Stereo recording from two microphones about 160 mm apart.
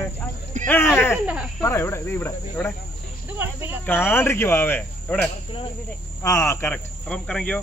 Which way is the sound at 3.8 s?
15° left (ahead or behind).